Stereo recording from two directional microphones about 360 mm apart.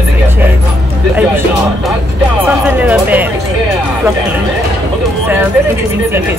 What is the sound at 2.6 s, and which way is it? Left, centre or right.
Speech, centre.